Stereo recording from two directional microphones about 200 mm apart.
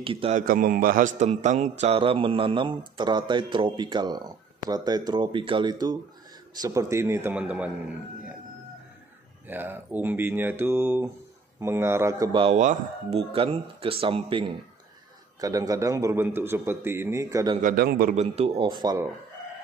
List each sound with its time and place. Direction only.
0.0 s speech: 25° right (ahead or behind)
0.5 s a man's voice: 45° right (ahead or behind); by 7.7 s 5° right (ahead or behind)
9.5 s a man's voice: 10° right (ahead or behind)
17.6 s a man's voice: 45° right (ahead or behind)
18.1 s speech: 30° right (ahead or behind)